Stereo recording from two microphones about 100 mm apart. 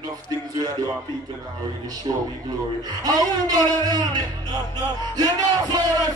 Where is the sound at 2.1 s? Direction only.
50° right (ahead or behind).